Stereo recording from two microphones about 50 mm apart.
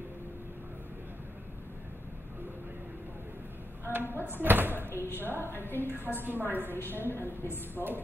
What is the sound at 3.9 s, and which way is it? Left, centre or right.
A woman's voice, right.